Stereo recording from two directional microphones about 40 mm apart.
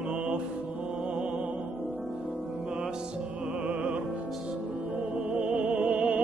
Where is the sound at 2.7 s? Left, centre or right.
Centre.